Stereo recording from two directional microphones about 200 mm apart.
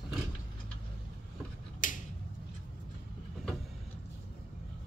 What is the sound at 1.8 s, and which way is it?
Finger snapping, 40° left (ahead or behind).